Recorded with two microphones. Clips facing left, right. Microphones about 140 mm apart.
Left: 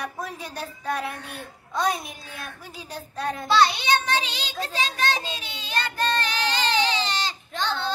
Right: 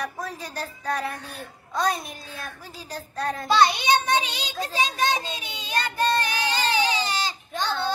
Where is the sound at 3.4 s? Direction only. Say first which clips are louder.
Even; 10° right (ahead or behind).